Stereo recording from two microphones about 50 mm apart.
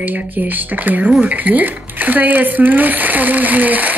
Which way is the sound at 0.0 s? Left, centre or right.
Right.